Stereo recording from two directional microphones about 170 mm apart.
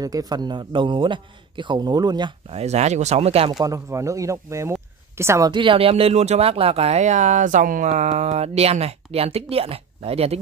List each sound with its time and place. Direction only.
0.0 s a man's voice: 20° right (ahead or behind)
2.6 s speech: 40° right (ahead or behind)
3.6 s speech: 20° right (ahead or behind)
5.5 s speech: 30° right (ahead or behind)